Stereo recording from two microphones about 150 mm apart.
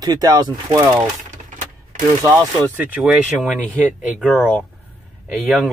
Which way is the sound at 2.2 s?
20° right (ahead or behind).